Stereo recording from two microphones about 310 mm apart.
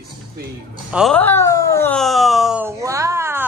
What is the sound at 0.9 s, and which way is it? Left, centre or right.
Speech, centre.